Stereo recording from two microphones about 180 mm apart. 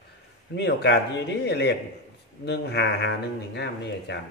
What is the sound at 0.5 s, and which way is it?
Speech, 70° left (ahead or behind).